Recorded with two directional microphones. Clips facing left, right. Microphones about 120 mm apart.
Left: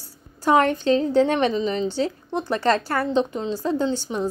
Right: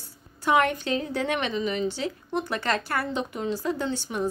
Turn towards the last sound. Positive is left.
turn(degrees=30)  # may be behind; listen again after turning